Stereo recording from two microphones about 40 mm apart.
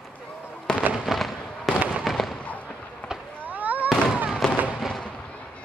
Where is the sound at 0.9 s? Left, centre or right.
Centre.